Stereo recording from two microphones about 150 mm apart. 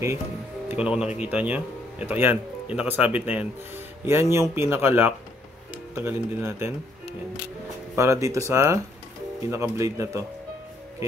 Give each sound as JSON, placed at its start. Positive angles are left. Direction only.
{"t": 0.7, "sound": "speech", "side_deg": -5}
{"t": 7.9, "sound": "speech", "side_deg": -20}